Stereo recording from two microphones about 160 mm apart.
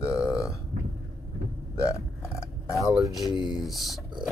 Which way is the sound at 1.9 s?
20° left (ahead or behind).